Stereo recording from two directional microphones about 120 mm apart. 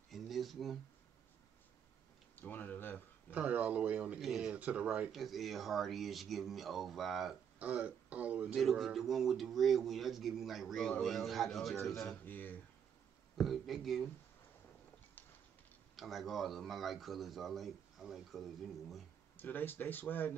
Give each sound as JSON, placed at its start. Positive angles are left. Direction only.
{"t": 0.1, "sound": "a sound", "side_deg": 0}
{"t": 2.3, "sound": "speech", "side_deg": 15}
{"t": 3.3, "sound": "speech", "side_deg": -10}
{"t": 7.5, "sound": "speech", "side_deg": -10}
{"t": 8.5, "sound": "speech", "side_deg": 0}
{"t": 12.3, "sound": "speech", "side_deg": 15}
{"t": 13.4, "sound": "speech", "side_deg": 0}
{"t": 16.0, "sound": "speech", "side_deg": 0}
{"t": 19.3, "sound": "speech", "side_deg": 15}